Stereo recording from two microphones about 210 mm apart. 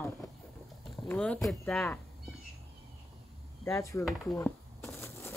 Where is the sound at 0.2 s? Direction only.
15° left (ahead or behind).